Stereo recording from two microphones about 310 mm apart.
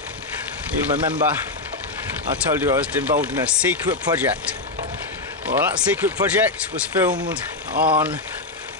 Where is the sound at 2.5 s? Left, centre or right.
Centre.